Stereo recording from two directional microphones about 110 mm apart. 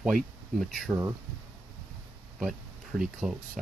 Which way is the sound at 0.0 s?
Centre (ahead or behind).